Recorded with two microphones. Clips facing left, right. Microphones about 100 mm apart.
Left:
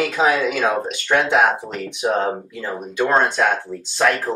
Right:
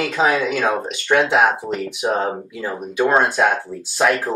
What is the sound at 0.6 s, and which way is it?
Speech, 5° right (ahead or behind).